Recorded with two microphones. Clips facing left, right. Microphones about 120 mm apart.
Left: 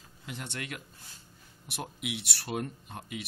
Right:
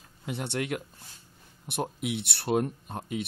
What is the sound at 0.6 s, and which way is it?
Speech, 45° right (ahead or behind).